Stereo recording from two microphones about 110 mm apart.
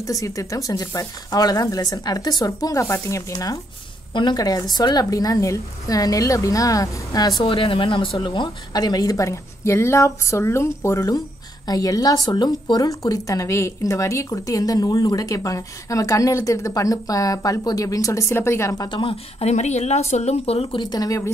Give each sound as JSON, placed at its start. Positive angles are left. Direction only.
{"t": 0.0, "sound": "a woman's voice", "side_deg": 30}
{"t": 4.1, "sound": "a woman's voice", "side_deg": 45}
{"t": 7.4, "sound": "a woman's voice", "side_deg": 50}
{"t": 18.9, "sound": "speech", "side_deg": 45}
{"t": 19.4, "sound": "speech", "side_deg": 90}
{"t": 20.8, "sound": "a woman's voice", "side_deg": 35}